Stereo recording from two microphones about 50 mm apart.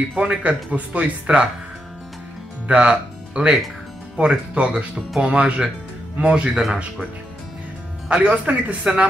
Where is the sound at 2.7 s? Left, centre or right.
Right.